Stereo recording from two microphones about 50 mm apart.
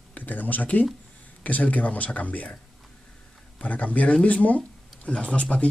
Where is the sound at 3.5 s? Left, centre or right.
Left.